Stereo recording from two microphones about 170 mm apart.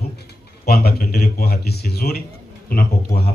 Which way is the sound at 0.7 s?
65° left (ahead or behind).